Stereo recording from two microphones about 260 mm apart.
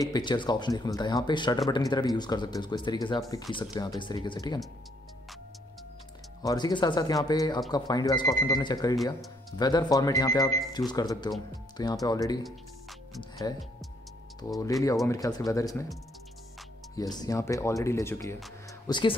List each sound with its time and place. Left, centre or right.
0.0 s speech: centre
6.4 s speech: centre
14.6 s speech: centre
17.2 s speech: centre